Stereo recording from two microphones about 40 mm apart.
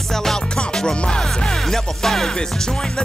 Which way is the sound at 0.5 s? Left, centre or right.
Left.